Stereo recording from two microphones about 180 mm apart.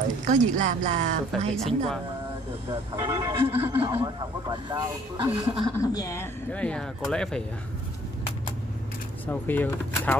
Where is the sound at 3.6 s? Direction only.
30° right (ahead or behind).